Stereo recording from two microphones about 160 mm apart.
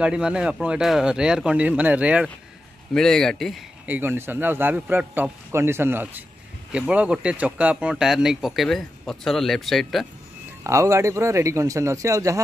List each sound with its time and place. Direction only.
0.0 s speech: 5° right (ahead or behind)
2.9 s speech: 5° left (ahead or behind)
3.8 s a man's voice: 10° right (ahead or behind)
10.6 s a man's voice: 20° right (ahead or behind)